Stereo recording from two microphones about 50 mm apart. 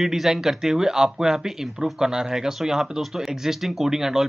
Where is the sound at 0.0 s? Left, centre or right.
Centre.